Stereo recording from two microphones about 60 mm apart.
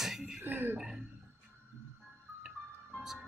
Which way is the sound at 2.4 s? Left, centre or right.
Centre.